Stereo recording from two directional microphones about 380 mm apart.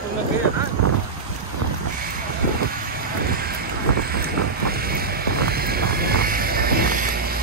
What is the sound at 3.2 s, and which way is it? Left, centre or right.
Boat, right.